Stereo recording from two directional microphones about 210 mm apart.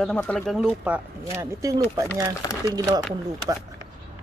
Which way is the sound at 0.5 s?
5° right (ahead or behind).